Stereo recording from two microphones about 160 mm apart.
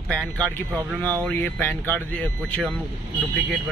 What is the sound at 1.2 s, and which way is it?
Speech, 10° left (ahead or behind).